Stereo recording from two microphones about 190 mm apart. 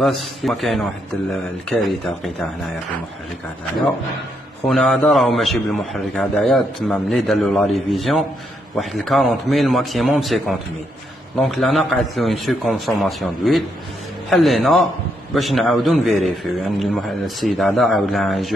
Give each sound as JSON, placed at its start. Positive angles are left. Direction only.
{"t": 0.0, "sound": "a man's voice", "side_deg": 0}
{"t": 4.6, "sound": "a man's voice", "side_deg": 0}